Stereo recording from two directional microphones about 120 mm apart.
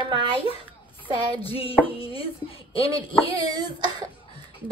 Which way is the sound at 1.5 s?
50° left (ahead or behind).